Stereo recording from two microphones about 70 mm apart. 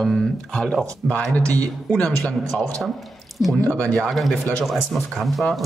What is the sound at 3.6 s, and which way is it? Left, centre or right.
Speech, centre.